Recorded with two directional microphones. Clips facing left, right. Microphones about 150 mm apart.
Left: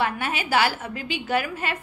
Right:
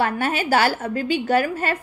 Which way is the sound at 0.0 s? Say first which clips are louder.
Right 4 dB; 45° right (ahead or behind).